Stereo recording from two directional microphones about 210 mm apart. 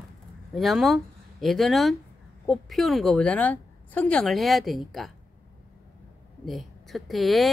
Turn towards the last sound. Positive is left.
turn(degrees=0)  # may be behind; listen again after turning